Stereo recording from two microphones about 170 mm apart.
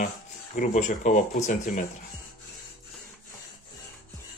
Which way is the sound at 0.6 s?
45° left (ahead or behind).